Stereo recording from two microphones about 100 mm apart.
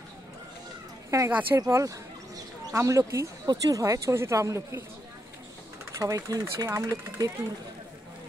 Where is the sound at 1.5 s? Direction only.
35° right (ahead or behind).